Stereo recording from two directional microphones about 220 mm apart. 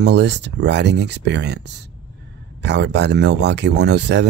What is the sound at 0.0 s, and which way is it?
Speech, 50° right (ahead or behind).